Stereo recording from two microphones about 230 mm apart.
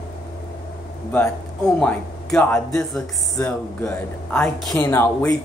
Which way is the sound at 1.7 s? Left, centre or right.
Centre.